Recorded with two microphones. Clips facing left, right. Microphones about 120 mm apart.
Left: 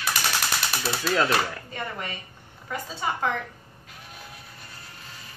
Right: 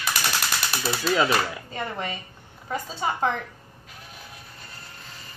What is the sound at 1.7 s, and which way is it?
A woman's voice, 30° right (ahead or behind).